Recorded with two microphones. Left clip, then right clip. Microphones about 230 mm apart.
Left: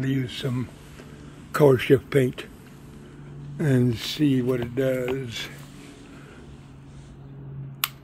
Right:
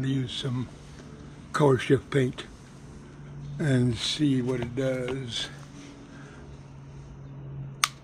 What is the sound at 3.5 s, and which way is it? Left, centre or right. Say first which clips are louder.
Speech: left 3 dB; centre.